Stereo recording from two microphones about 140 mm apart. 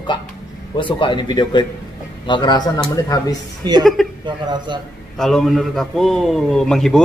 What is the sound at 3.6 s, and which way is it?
A woman's voice, 30° right (ahead or behind).